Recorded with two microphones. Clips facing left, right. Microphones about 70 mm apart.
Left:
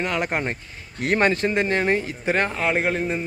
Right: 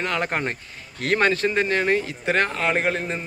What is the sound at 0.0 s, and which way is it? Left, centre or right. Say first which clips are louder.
Speech: even; centre.